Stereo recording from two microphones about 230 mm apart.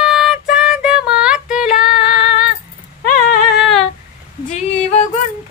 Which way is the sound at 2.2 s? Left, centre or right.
Left.